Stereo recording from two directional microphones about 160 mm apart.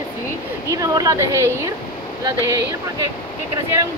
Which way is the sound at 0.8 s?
20° right (ahead or behind).